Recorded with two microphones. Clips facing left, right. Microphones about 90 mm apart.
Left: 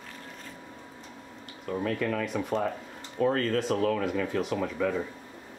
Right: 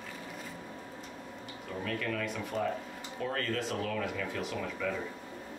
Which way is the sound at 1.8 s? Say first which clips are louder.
Left 5 dB; 40° left (ahead or behind).